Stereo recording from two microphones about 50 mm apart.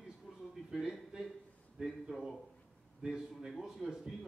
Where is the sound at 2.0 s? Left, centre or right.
Centre.